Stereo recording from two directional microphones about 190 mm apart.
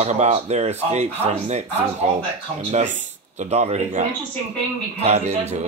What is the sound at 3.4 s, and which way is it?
Speech, 35° right (ahead or behind).